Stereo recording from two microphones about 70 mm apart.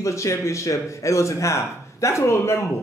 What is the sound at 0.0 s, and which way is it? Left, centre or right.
Speech, left.